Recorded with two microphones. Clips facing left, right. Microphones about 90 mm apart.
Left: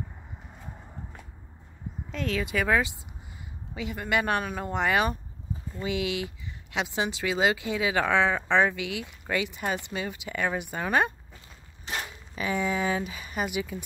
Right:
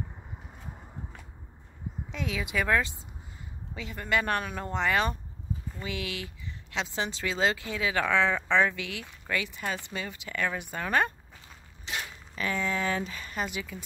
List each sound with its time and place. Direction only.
2.1 s speech: 5° right (ahead or behind); by 11.1 s 10° left (ahead or behind)
11.9 s mechanisms: 45° left (ahead or behind)
12.4 s speech: 15° left (ahead or behind)